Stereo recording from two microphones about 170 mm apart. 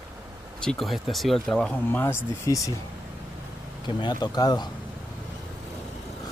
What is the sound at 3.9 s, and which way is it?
Speech, 25° left (ahead or behind).